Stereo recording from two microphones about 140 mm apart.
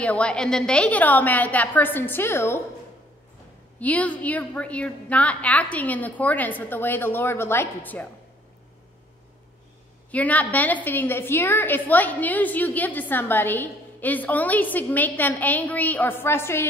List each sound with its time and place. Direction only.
0.0 s a woman's voice: 10° left (ahead or behind)
3.8 s a woman's voice: 10° left (ahead or behind)
10.1 s a woman's voice: 10° left (ahead or behind)